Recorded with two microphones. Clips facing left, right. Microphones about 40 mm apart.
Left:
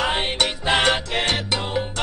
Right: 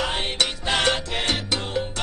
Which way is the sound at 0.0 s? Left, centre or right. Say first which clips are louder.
Left 3 dB; left.